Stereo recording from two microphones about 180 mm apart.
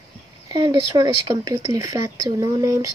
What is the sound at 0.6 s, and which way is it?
Speech, 20° right (ahead or behind).